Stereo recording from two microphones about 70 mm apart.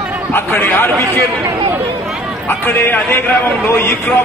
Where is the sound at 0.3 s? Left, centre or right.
Left.